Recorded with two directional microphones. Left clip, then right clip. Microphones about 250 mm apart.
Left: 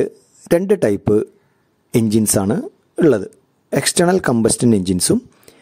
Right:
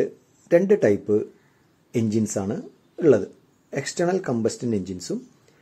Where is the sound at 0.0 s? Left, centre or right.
Left.